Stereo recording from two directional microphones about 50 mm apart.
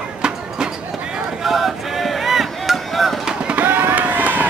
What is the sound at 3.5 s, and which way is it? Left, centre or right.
Run, right.